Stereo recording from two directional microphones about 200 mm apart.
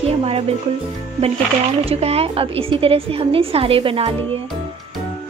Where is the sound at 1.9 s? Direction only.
30° right (ahead or behind).